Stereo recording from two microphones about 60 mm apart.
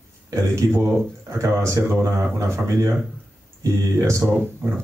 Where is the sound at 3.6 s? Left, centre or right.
Right.